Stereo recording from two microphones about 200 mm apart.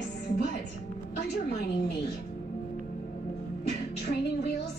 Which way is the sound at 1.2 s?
50° left (ahead or behind).